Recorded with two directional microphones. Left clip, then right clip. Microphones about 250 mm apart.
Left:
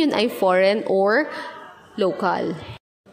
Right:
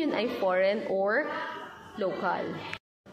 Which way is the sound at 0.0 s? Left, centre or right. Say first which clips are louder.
Left 9 dB; left.